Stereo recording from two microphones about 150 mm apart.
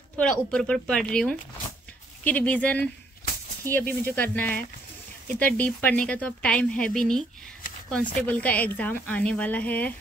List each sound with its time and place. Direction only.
0.2 s a woman's voice: 5° left (ahead or behind)